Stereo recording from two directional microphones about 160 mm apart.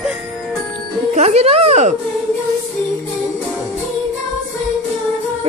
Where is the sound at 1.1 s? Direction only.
45° right (ahead or behind).